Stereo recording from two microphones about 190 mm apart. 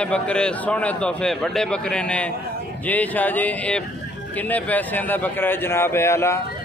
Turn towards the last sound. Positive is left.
turn(degrees=15)  # may be behind; listen again after turning